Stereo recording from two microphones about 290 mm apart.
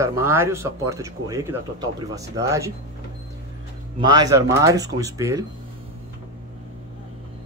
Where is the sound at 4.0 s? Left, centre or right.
Centre.